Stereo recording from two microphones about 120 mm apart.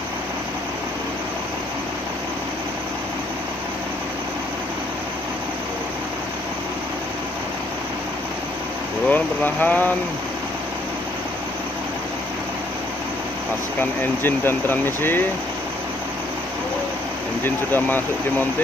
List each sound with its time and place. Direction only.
9.0 s speech: 15° left (ahead or behind)
13.7 s speech: 15° left (ahead or behind)
17.4 s speech: 15° left (ahead or behind)